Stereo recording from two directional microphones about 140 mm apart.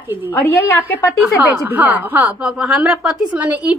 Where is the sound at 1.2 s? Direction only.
10° right (ahead or behind).